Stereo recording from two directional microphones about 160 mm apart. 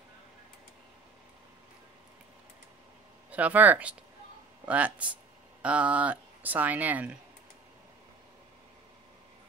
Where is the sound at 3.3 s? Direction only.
10° right (ahead or behind).